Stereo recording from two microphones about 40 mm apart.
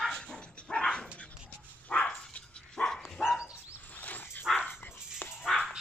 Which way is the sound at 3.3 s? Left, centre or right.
Centre.